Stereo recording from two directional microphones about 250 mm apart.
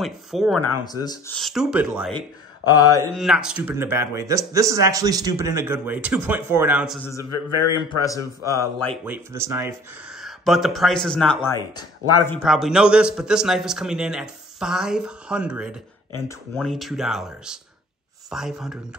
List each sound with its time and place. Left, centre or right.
0.0 s a man's voice: centre
0.8 s speech: centre
1.3 s a man's voice: centre
2.6 s speech: centre
3.2 s speech: centre
7.2 s a man's voice: left
8.5 s speech: centre
9.0 s a man's voice: centre
12.3 s a man's voice: centre